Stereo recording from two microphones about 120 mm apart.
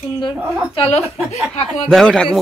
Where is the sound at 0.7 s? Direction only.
50° left (ahead or behind).